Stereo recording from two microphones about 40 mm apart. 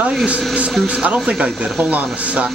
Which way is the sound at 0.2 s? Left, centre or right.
Right.